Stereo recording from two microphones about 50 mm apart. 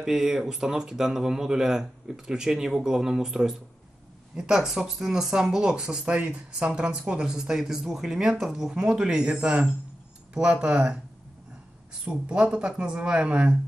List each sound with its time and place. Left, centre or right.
0.0 s speech: centre
12.0 s speech: right